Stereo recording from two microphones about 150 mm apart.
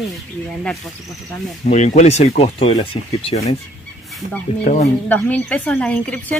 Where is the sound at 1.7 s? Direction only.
50° left (ahead or behind).